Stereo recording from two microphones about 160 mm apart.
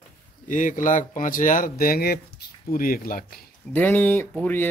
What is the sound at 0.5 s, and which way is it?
Speech, 55° left (ahead or behind).